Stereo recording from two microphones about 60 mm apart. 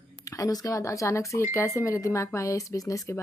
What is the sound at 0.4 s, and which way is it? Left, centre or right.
A woman's voice, left.